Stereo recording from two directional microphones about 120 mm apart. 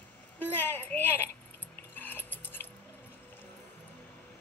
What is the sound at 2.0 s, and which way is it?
Music, 15° left (ahead or behind).